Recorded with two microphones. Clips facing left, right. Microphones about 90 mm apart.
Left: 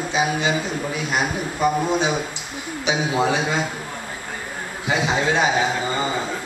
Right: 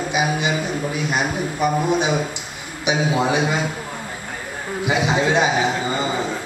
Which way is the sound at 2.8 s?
15° right (ahead or behind).